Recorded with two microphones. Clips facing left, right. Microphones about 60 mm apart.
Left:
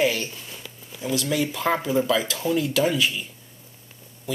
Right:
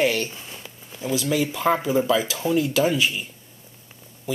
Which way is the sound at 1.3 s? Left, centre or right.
Centre.